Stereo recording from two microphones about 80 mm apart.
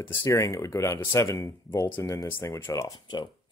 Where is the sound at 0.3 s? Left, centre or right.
Left.